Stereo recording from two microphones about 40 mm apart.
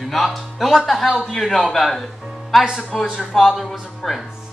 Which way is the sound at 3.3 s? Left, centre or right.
Centre.